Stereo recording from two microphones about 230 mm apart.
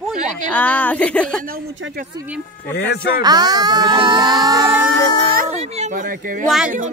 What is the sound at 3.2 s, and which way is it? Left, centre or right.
Speech, centre.